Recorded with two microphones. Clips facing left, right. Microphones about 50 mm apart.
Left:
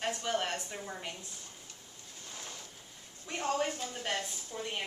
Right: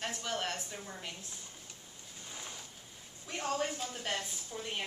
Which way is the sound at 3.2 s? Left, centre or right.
Centre.